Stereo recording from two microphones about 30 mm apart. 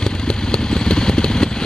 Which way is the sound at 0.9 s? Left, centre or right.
Left.